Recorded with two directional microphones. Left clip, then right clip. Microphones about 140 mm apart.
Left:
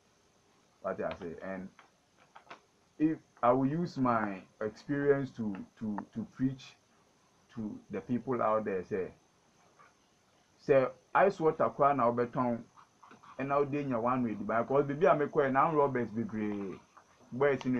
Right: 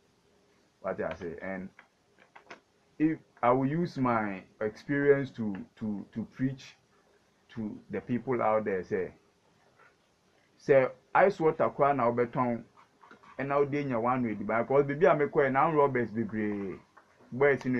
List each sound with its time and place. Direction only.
0.8 s speech: 25° right (ahead or behind)
3.0 s a man's voice: 25° right (ahead or behind)
10.6 s a man's voice: 30° right (ahead or behind)